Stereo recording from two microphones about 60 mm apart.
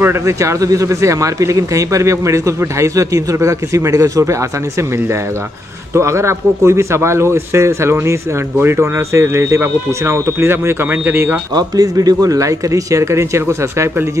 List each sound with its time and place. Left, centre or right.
0.2 s speech: right
10.9 s speech: right
11.7 s speech: right